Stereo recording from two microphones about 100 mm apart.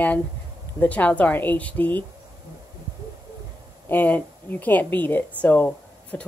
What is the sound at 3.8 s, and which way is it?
A woman's voice, 20° left (ahead or behind).